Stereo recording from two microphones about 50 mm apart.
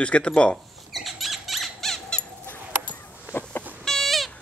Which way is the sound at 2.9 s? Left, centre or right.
Left.